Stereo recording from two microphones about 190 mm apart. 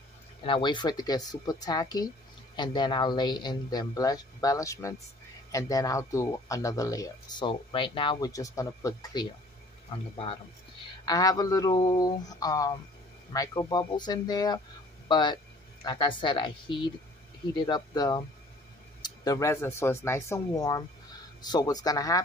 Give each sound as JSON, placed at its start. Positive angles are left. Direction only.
{"t": 0.4, "sound": "speech", "side_deg": 25}
{"t": 11.1, "sound": "speech", "side_deg": 20}